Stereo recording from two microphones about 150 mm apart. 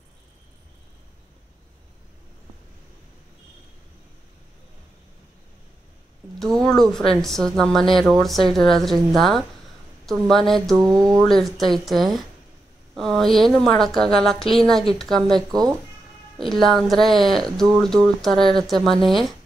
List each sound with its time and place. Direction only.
6.4 s speech: centre (ahead or behind)
10.8 s speech: 25° right (ahead or behind)
11.1 s speech: centre (ahead or behind)